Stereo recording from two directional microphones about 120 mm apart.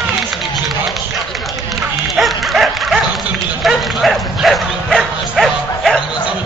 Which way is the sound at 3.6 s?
Centre (ahead or behind).